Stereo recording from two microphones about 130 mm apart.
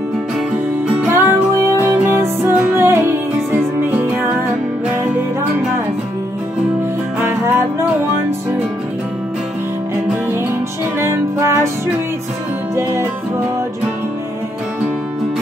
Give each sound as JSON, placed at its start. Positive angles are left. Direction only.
{"t": 0.8, "sound": "music", "side_deg": -15}
{"t": 7.2, "sound": "music", "side_deg": -15}
{"t": 11.0, "sound": "music", "side_deg": -20}
{"t": 12.7, "sound": "music", "side_deg": -20}